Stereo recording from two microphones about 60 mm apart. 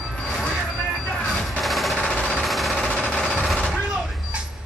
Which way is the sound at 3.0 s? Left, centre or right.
Centre.